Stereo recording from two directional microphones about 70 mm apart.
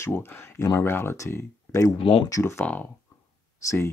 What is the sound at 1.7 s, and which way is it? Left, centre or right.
Speech, left.